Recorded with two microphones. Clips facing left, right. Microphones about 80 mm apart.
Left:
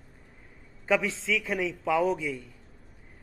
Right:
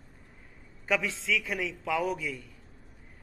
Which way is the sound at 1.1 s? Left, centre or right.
Centre.